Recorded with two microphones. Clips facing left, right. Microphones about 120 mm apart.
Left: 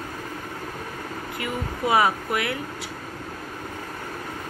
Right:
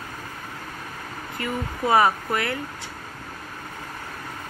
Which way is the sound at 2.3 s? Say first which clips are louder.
Even; 15° left (ahead or behind).